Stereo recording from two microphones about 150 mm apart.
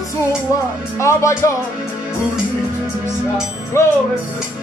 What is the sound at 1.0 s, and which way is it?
Speech, 20° left (ahead or behind).